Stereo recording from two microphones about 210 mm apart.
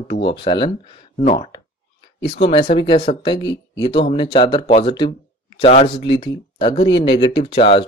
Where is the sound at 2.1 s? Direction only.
60° left (ahead or behind).